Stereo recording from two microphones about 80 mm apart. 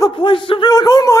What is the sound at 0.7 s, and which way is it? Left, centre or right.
Speech, left.